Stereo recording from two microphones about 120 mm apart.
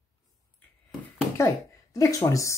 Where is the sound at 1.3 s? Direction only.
25° left (ahead or behind).